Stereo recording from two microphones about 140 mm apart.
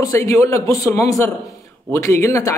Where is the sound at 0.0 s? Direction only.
25° left (ahead or behind).